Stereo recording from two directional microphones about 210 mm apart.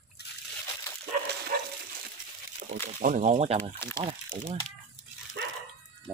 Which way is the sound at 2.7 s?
40° right (ahead or behind).